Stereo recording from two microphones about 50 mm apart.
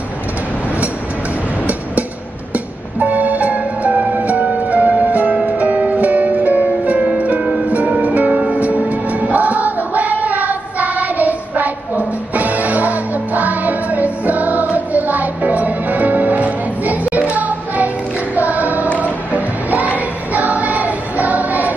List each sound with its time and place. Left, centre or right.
2.5 s music: right